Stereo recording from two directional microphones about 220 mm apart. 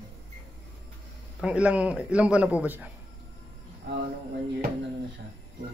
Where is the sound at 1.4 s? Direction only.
5° right (ahead or behind).